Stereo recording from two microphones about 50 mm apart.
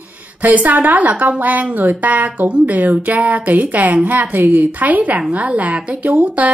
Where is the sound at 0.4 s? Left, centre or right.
Right.